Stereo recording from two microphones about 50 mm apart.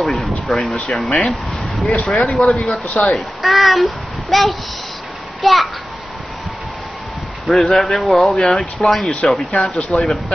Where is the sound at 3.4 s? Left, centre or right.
Centre.